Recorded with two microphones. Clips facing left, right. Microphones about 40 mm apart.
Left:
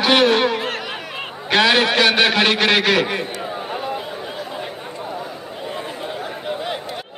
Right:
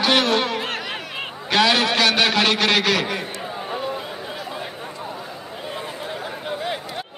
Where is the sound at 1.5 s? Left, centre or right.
Left.